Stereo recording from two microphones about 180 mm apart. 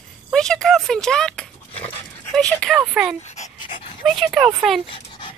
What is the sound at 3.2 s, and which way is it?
Dog, 40° left (ahead or behind).